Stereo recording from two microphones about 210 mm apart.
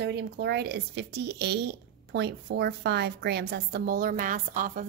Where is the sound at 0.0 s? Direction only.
55° right (ahead or behind).